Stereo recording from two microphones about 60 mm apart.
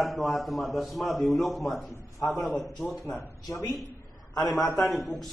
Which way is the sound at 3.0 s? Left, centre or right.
Left.